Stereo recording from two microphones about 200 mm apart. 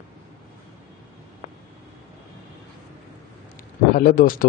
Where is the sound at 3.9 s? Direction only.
45° left (ahead or behind).